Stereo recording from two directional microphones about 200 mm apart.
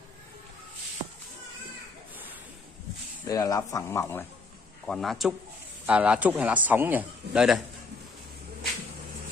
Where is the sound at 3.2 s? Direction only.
15° left (ahead or behind).